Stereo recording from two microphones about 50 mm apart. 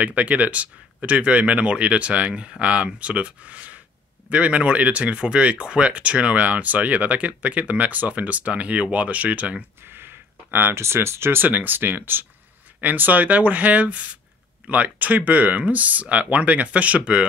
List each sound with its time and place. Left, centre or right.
0.0 s speech: right
9.8 s a sound: right
11.4 s speech: right